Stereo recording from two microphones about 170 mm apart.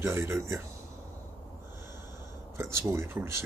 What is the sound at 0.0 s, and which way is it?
Speech, 15° right (ahead or behind).